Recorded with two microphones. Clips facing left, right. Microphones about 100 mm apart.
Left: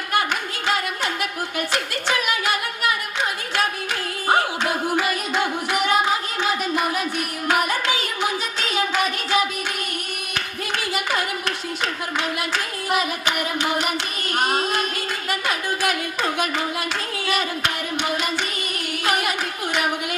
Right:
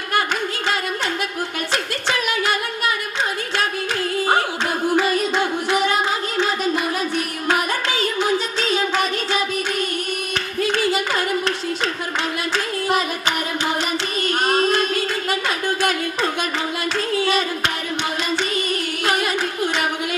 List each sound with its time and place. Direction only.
4.9 s music: 30° right (ahead or behind)